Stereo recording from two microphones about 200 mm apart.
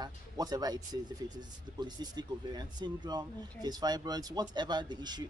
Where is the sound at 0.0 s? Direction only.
20° right (ahead or behind).